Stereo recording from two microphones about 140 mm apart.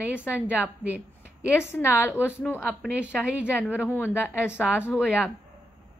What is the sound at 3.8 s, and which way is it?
A woman's voice, 15° left (ahead or behind).